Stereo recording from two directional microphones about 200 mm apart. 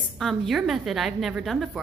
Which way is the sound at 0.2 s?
Centre (ahead or behind).